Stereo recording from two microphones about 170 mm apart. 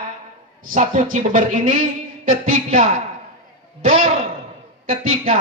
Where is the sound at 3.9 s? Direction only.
35° right (ahead or behind).